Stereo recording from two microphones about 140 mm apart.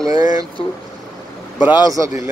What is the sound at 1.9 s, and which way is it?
Speech, 25° right (ahead or behind).